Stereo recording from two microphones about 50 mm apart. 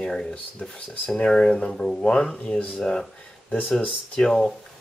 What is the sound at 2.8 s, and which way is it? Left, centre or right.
Speech, centre.